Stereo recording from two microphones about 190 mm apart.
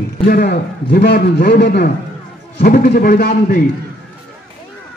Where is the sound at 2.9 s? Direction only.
55° left (ahead or behind).